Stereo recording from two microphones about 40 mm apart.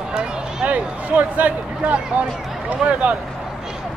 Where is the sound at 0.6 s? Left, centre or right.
Right.